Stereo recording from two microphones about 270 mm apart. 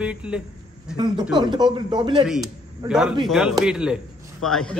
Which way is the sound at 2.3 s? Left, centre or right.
Centre.